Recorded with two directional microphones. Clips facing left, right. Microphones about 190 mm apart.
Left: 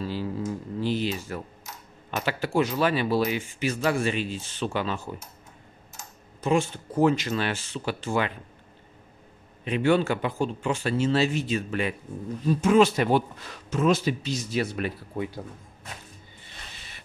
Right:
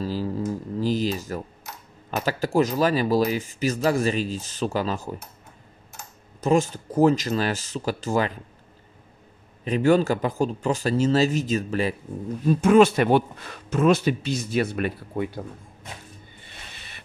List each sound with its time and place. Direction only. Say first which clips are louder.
0.0 s a sound: right 3 dB; 40° right (ahead or behind)
0.5 s typing: right 3 dB; 40° right (ahead or behind)
2.0 s speech: right 3 dB; 40° right (ahead or behind)
6.4 s speech: right 3 dB; 40° right (ahead or behind)
9.7 s speech: right 3 dB; 40° right (ahead or behind)
12.4 s speech: right 3 dB; 55° right (ahead or behind)
16.7 s printer: right 2 dB; 60° right (ahead or behind)